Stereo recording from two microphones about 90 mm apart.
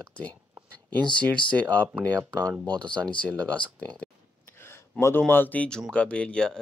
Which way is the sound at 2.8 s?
15° left (ahead or behind).